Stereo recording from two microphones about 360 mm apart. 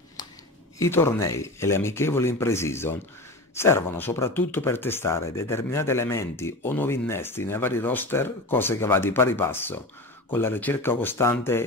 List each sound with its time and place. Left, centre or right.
0.7 s speech: centre